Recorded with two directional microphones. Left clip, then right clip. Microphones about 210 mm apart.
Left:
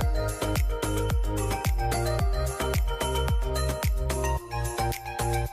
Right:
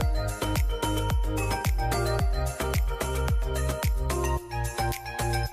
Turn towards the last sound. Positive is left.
turn(degrees=0)  # may be behind; listen again after turning